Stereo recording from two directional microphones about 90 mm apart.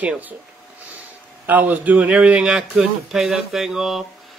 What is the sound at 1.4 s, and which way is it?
A man's voice, 20° right (ahead or behind).